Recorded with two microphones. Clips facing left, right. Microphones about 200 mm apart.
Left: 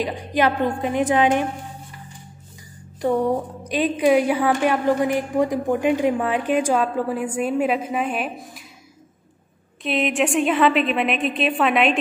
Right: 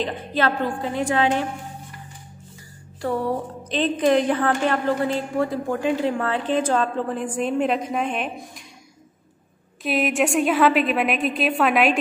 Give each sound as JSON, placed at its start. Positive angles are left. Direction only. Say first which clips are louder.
{"t": 0.0, "sound": "a woman's voice", "louder": "left 2 dB", "side_deg": 15}
{"t": 3.0, "sound": "a woman's voice", "louder": "left 4 dB", "side_deg": 20}
{"t": 9.8, "sound": "a woman's voice", "louder": "even", "side_deg": 0}